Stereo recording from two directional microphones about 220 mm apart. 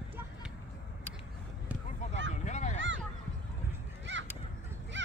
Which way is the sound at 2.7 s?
55° right (ahead or behind).